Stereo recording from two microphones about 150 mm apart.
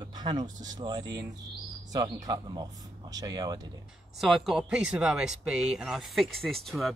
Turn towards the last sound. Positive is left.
turn(degrees=0)  # may be behind; listen again after turning